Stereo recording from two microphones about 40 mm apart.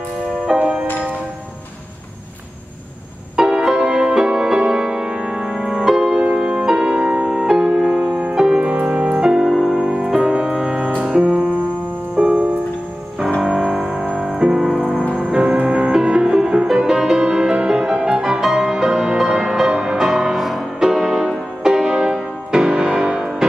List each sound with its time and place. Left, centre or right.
0.5 s music: centre
3.3 s music: centre
6.0 s music: right
6.3 s music: centre
7.9 s music: centre
8.4 s music: centre
8.6 s music: right
9.2 s music: centre
9.5 s music: centre
9.9 s music: centre
23.0 s music: centre